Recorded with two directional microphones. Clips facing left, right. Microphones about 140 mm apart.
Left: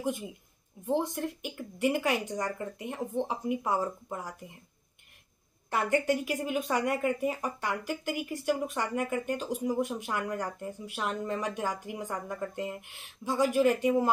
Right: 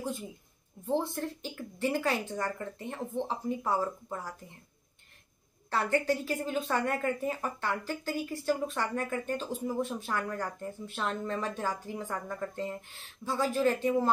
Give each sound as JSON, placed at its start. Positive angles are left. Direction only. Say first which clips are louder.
{"t": 0.0, "sound": "a woman's voice", "louder": "left 3 dB", "side_deg": 20}
{"t": 5.7, "sound": "a woman's voice", "louder": "left 1 dB", "side_deg": 15}